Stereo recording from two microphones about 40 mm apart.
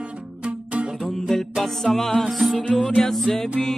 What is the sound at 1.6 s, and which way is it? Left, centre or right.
Music, centre.